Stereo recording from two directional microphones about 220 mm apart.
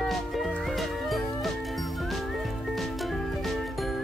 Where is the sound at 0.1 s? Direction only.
Centre (ahead or behind).